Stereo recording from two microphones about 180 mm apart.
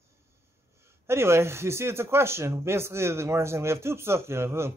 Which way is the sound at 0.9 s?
15° right (ahead or behind).